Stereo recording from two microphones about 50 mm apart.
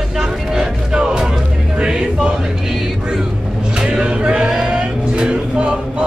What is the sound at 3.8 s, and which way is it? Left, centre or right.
Music, centre.